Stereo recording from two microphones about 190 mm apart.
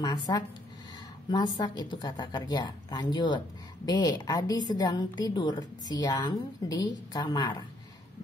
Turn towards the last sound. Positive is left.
turn(degrees=25)  # may be behind; listen again after turning